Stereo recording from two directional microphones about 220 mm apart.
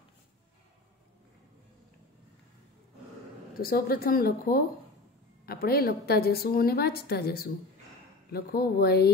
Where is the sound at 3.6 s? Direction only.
45° left (ahead or behind).